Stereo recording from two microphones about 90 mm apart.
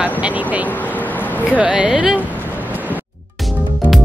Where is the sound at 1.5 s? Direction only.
10° right (ahead or behind).